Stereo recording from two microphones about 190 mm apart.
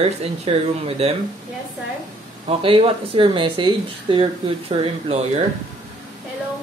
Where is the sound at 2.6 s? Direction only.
30° right (ahead or behind).